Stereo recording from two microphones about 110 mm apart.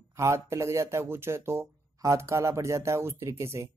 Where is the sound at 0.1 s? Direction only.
25° right (ahead or behind).